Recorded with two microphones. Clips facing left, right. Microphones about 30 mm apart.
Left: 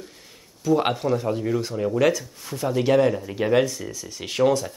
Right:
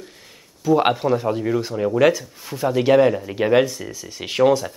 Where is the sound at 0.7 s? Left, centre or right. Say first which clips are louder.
Right 4 dB; centre.